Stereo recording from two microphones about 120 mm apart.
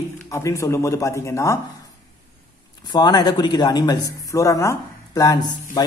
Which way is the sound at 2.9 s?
35° left (ahead or behind).